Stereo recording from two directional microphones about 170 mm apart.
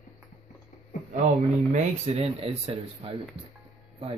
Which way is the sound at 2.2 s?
35° right (ahead or behind).